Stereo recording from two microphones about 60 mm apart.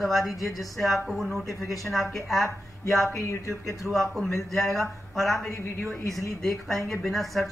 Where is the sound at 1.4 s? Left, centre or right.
Right.